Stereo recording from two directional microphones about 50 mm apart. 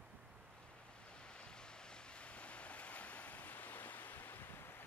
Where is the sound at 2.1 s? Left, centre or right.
Left.